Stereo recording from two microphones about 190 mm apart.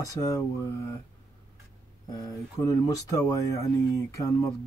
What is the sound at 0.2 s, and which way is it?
Speech, 15° left (ahead or behind).